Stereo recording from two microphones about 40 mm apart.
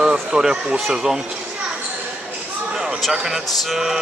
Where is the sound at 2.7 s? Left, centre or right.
Centre.